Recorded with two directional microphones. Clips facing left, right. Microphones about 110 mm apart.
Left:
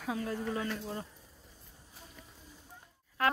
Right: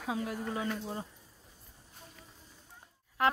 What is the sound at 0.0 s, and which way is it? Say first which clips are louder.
Speech: even; 15° right (ahead or behind).